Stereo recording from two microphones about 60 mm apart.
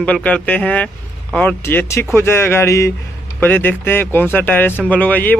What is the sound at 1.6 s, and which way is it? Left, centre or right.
Speech, left.